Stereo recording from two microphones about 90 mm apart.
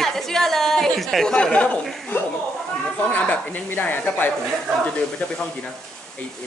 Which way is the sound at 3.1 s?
15° left (ahead or behind).